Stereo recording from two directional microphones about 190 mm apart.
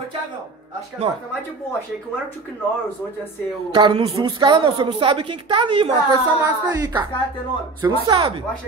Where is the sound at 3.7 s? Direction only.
25° right (ahead or behind).